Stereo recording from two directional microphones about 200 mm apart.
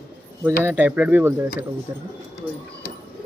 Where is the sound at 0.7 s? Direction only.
10° right (ahead or behind).